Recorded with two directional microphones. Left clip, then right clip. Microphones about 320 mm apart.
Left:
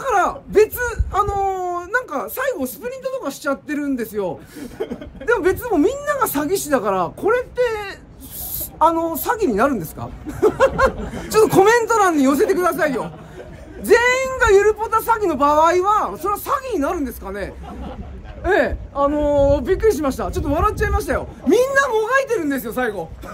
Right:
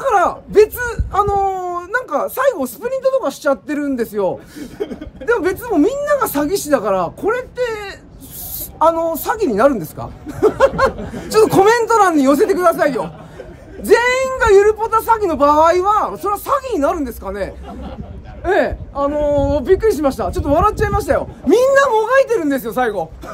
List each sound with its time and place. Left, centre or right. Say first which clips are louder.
0.0 s a sound: right 4 dB; centre
4.6 s speech: right 2 dB; left
5.2 s a woman's voice: right 1 dB; centre